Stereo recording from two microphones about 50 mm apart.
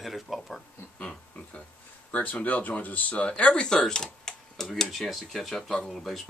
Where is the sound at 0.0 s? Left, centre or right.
Centre.